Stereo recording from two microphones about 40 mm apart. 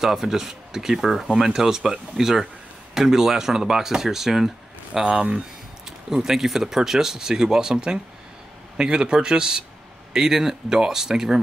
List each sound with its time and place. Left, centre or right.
0.0 s speech: centre
5.0 s speech: right
5.9 s speech: centre